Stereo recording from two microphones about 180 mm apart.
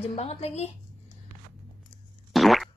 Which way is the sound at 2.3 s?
Centre (ahead or behind).